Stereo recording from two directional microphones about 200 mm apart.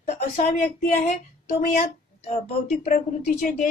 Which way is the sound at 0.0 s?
35° left (ahead or behind).